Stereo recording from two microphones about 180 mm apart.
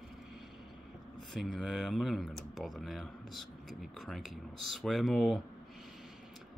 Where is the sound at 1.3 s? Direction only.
Centre (ahead or behind).